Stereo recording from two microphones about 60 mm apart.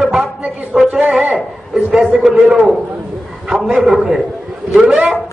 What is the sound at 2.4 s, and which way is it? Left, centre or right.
A man's voice, right.